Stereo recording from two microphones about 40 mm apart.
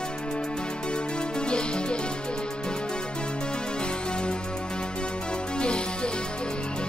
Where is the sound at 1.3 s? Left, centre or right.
Left.